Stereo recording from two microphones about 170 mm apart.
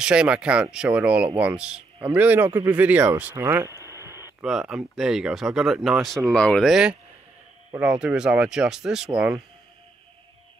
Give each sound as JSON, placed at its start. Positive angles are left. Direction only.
{"t": 0.0, "sound": "speech", "side_deg": -5}
{"t": 3.8, "sound": "a sound", "side_deg": -15}
{"t": 4.5, "sound": "speech", "side_deg": -5}